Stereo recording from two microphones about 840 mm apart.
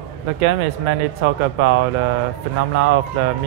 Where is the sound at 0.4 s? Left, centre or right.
Right.